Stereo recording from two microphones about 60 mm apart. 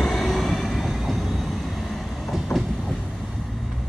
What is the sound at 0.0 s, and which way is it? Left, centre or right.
Vehicle, centre.